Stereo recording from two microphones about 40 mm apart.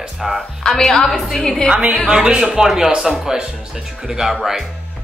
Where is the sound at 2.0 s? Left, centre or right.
Right.